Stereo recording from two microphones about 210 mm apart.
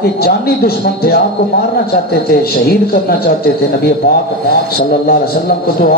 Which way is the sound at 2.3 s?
45° left (ahead or behind).